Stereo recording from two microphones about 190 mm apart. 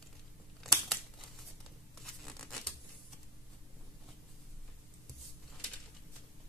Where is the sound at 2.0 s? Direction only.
Centre (ahead or behind).